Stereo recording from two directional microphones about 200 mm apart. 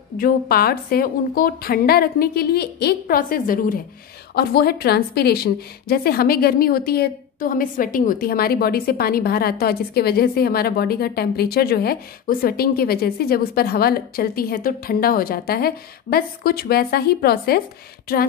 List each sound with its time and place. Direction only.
0.2 s a woman's voice: 50° left (ahead or behind)